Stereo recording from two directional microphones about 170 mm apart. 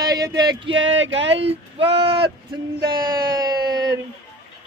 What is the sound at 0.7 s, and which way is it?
Speech, 90° right.